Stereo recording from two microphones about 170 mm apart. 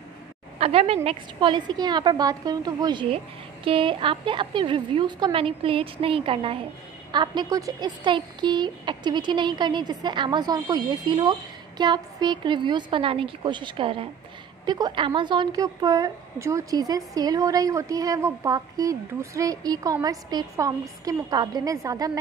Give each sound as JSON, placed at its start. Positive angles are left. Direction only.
{"t": 0.6, "sound": "a woman's voice", "side_deg": -35}